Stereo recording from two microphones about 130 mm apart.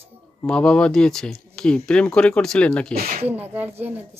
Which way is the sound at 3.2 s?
15° right (ahead or behind).